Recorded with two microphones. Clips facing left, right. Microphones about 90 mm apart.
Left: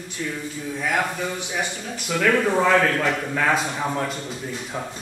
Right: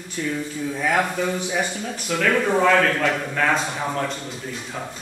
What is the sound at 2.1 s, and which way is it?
Speech, 5° left (ahead or behind).